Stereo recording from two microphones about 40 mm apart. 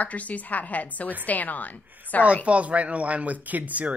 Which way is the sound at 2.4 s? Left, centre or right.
Right.